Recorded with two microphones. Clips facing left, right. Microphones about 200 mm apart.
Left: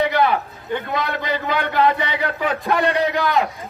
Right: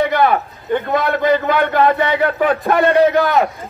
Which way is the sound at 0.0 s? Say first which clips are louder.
Right 3 dB; 50° right (ahead or behind).